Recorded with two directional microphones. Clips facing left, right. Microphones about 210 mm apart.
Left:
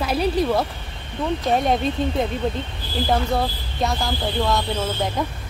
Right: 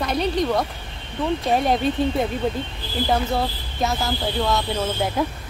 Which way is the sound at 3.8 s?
Centre (ahead or behind).